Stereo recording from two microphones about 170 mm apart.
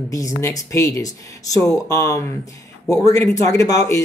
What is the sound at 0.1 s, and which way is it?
Speech, 20° left (ahead or behind).